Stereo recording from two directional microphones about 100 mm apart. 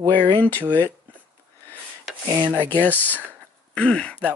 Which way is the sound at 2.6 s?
20° left (ahead or behind).